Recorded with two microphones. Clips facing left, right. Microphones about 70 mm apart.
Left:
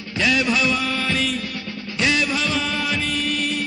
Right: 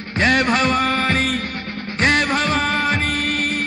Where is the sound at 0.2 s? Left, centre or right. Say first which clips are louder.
Right 3 dB; right.